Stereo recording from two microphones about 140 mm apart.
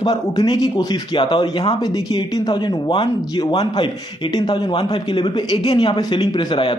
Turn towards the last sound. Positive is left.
turn(degrees=35)  # may be behind; listen again after turning